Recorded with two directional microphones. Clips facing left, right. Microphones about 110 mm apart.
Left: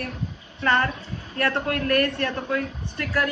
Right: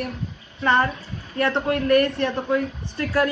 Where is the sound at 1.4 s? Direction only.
20° right (ahead or behind).